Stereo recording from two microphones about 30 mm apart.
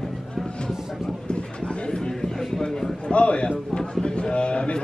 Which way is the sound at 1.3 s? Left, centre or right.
Left.